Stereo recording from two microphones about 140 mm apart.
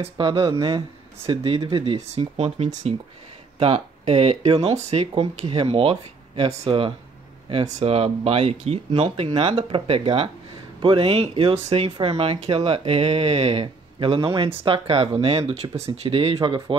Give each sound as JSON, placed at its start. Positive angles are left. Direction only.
{"t": 0.0, "sound": "speech", "side_deg": -35}
{"t": 2.0, "sound": "speech", "side_deg": -50}
{"t": 13.9, "sound": "speech", "side_deg": -35}